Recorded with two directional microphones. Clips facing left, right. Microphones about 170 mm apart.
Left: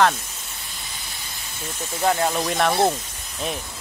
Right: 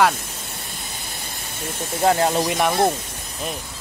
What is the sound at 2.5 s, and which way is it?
Speech, 10° right (ahead or behind).